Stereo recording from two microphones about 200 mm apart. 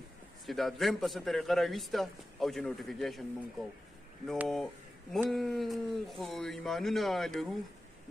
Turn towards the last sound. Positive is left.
turn(degrees=0)  # may be behind; listen again after turning